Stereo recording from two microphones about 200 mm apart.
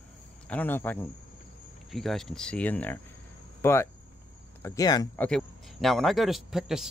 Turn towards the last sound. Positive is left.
turn(degrees=0)  # may be behind; listen again after turning